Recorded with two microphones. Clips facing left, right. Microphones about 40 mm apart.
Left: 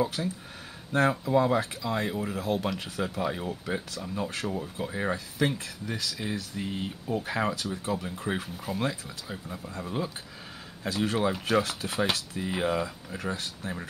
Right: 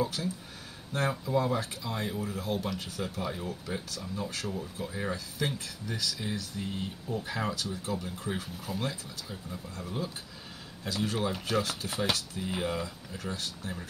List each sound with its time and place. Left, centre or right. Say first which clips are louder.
0.0 s speech: left 3 dB; left
0.9 s speech: left 5 dB; left
6.5 s speech: left 3 dB; left